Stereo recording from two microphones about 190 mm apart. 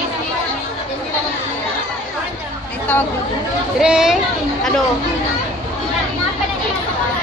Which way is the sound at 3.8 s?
5° right (ahead or behind).